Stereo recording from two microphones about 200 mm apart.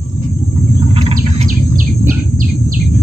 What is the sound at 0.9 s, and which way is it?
Bird, 30° right (ahead or behind).